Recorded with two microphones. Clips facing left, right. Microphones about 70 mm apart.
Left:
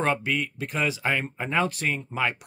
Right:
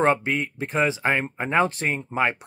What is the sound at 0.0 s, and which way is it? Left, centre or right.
Speech, right.